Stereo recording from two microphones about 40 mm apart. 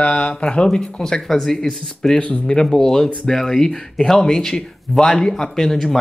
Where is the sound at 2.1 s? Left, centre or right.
Left.